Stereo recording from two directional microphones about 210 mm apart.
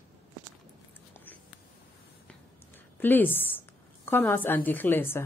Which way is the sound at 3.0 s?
10° left (ahead or behind).